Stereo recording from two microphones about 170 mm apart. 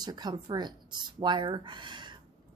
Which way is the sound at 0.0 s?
25° right (ahead or behind).